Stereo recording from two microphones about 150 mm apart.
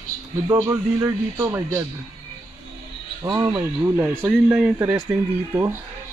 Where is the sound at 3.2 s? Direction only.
25° right (ahead or behind).